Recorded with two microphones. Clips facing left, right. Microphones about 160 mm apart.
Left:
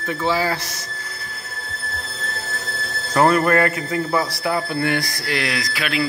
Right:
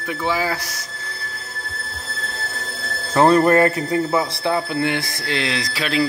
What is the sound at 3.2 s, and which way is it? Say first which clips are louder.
A man's voice: right 3 dB; 30° right (ahead or behind).